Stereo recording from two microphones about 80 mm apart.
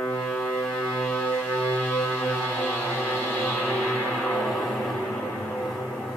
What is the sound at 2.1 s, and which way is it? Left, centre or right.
Music, centre.